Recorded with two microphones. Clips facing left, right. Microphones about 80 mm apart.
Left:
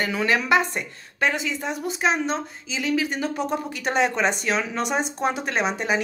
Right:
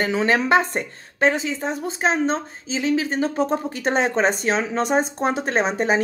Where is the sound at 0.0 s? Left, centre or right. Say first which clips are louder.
Right 3 dB; right.